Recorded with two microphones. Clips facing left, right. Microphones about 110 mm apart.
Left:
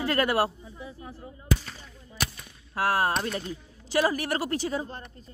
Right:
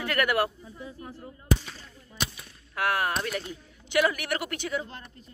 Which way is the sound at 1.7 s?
10° left (ahead or behind).